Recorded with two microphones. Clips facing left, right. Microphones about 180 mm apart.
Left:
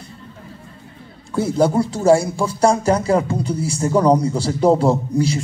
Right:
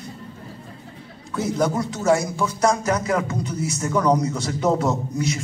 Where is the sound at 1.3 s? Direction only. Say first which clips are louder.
Left 5 dB; 30° left (ahead or behind).